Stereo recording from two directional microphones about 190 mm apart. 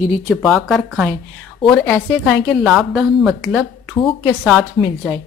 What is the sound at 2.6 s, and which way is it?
Speech, centre (ahead or behind).